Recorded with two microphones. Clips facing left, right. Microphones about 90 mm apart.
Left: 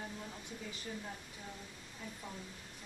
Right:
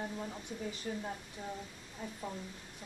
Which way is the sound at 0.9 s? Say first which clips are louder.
Right 5 dB; 40° right (ahead or behind).